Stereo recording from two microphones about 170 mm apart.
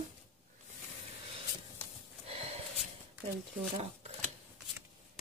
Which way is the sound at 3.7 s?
40° right (ahead or behind).